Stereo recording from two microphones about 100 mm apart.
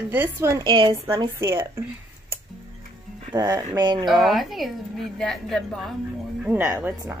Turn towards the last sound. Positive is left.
turn(degrees=-15)  # may be behind; listen again after turning